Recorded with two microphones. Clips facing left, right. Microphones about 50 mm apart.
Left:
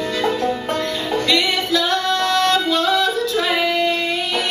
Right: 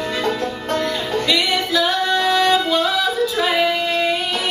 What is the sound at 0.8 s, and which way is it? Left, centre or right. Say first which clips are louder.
Music: even; centre.